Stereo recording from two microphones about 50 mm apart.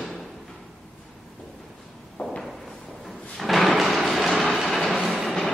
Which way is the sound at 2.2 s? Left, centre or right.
Centre.